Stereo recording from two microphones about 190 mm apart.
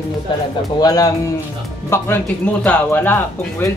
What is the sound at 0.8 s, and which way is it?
Speech, 20° left (ahead or behind).